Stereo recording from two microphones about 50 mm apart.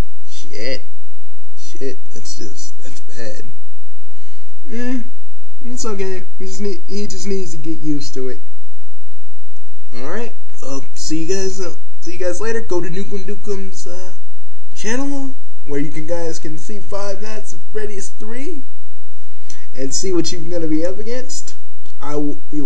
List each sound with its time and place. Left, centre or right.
0.3 s a sound: centre
4.6 s speech: centre
9.8 s a man's voice: centre